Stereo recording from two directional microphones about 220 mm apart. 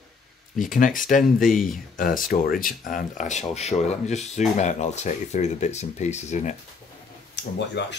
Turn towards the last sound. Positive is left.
turn(degrees=50)  # may be behind; listen again after turning